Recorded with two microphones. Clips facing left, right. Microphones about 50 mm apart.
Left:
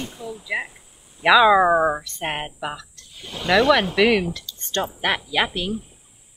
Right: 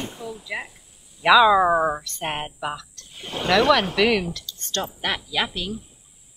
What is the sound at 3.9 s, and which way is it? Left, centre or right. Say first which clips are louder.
Speech: left 2 dB; centre.